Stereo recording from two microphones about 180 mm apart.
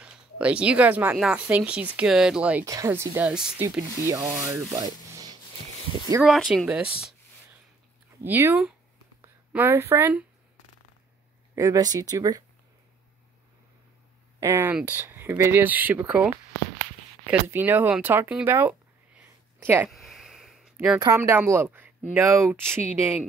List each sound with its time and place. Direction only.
0.0 s speech: 5° right (ahead or behind)
2.6 s speech: 15° right (ahead or behind)
3.6 s speech: 15° right (ahead or behind)
6.2 s speech: centre (ahead or behind)
8.2 s speech: 10° right (ahead or behind)
11.5 s speech: 20° right (ahead or behind)
14.4 s speech: 15° right (ahead or behind)
17.3 s speech: 10° right (ahead or behind)
19.9 s a sound: centre (ahead or behind)
21.0 s speech: 15° right (ahead or behind)